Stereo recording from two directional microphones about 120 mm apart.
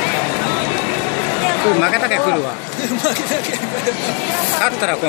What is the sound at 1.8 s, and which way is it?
Speech, centre (ahead or behind).